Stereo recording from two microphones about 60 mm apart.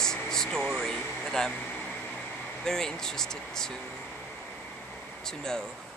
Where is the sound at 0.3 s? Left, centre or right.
Centre.